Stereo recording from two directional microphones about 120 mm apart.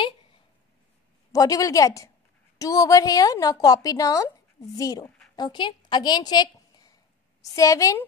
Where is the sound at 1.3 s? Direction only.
30° left (ahead or behind).